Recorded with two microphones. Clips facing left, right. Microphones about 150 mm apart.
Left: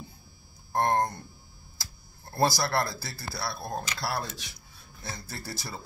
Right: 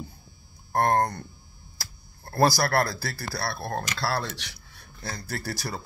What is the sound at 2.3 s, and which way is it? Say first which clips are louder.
Speech: right 4 dB; 60° right (ahead or behind).